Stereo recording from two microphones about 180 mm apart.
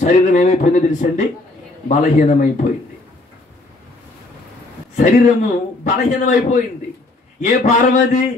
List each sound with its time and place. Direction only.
0.0 s a man's voice: 45° left (ahead or behind)
4.9 s a man's voice: 45° left (ahead or behind)